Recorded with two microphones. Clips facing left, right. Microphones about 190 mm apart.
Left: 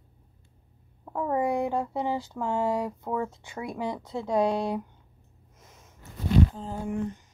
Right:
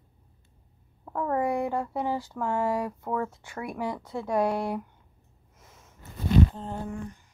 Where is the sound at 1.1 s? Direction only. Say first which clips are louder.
Even; 10° left (ahead or behind).